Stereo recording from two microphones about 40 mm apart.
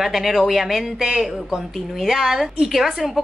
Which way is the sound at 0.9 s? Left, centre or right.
Centre.